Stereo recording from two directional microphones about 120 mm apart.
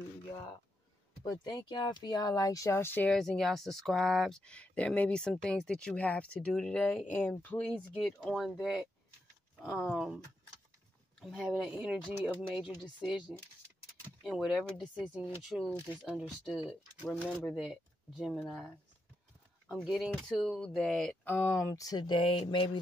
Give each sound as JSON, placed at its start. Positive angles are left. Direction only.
{"t": 1.4, "sound": "speech", "side_deg": 35}
{"t": 3.2, "sound": "speech", "side_deg": 0}
{"t": 9.9, "sound": "speech", "side_deg": 0}
{"t": 14.2, "sound": "speech", "side_deg": 0}
{"t": 19.8, "sound": "speech", "side_deg": -5}
{"t": 21.2, "sound": "speech", "side_deg": 15}
{"t": 22.5, "sound": "mantra", "side_deg": 45}